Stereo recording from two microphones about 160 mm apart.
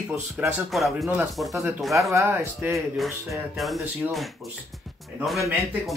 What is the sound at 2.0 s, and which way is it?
Speech, 20° right (ahead or behind).